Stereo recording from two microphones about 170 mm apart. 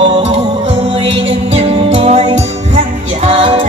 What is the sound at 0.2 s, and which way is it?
Music, 40° right (ahead or behind).